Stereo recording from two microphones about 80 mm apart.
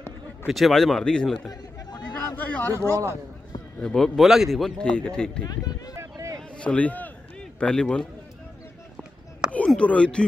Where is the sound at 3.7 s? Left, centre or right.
Centre.